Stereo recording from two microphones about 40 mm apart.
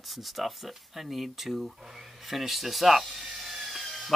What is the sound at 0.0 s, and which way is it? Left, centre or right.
Speech, centre.